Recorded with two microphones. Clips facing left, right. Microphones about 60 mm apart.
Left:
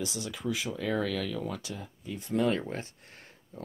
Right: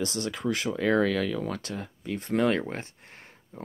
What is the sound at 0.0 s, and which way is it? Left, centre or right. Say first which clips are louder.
Speech: right 5 dB; right.